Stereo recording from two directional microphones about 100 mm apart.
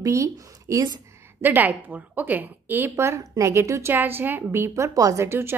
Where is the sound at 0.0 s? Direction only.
30° right (ahead or behind).